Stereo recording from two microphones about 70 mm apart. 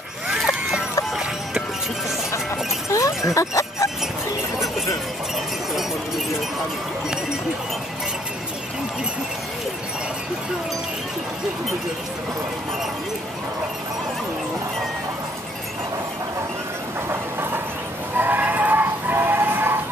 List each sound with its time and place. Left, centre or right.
0.3 s zipper: centre
1.1 s music: centre
2.9 s a sound: left
3.3 s music: left
17.1 s train: right
18.1 s music: right